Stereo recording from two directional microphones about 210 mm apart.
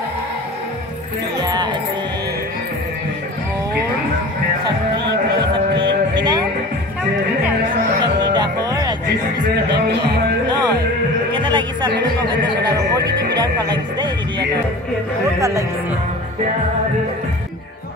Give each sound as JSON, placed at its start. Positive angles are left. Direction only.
{"t": 1.4, "sound": "music", "side_deg": -20}
{"t": 5.3, "sound": "music", "side_deg": -20}
{"t": 8.2, "sound": "music", "side_deg": -20}
{"t": 9.7, "sound": "music", "side_deg": -55}
{"t": 11.3, "sound": "music", "side_deg": -20}
{"t": 13.4, "sound": "music", "side_deg": -20}